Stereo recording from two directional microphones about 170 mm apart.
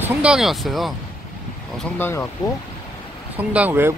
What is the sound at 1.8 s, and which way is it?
Speech, 15° left (ahead or behind).